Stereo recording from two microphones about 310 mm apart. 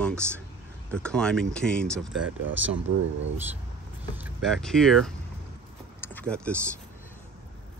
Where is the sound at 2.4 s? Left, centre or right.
Right.